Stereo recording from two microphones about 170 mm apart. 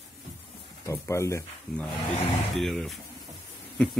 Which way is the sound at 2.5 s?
Centre (ahead or behind).